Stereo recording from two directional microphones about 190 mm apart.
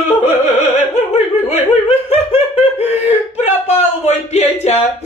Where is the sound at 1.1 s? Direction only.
35° left (ahead or behind).